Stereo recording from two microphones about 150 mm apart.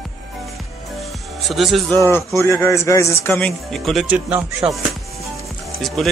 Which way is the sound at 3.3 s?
Centre (ahead or behind).